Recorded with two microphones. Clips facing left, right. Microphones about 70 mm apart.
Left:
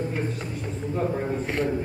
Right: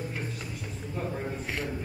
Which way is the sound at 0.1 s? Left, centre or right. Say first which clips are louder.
Left 7 dB; left.